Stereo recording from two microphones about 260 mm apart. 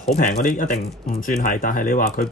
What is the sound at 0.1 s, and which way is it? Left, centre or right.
Speech, left.